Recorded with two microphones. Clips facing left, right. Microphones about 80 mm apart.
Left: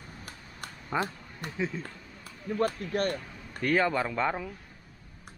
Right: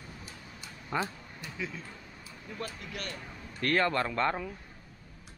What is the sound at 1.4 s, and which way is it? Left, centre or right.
Speech, left.